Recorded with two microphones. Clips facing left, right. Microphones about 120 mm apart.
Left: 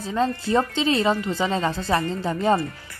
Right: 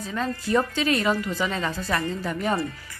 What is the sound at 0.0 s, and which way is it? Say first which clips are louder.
Speech: left 5 dB; 30° left (ahead or behind).